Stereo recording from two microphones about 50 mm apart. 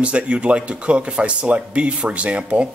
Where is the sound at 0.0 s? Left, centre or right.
Right.